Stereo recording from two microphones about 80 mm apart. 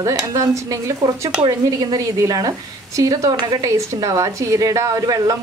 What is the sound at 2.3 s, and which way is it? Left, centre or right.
A woman's voice, right.